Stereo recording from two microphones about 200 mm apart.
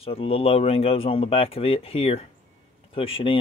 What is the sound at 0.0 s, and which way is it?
Speech, 30° left (ahead or behind).